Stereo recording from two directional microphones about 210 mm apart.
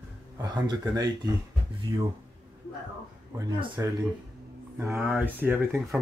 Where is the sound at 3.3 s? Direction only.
15° right (ahead or behind).